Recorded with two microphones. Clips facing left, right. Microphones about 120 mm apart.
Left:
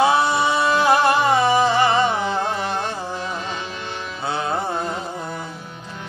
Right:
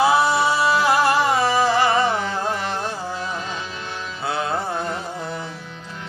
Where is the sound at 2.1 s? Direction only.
20° left (ahead or behind).